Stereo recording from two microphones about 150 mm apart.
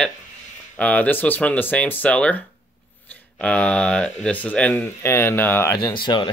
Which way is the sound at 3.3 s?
10° left (ahead or behind).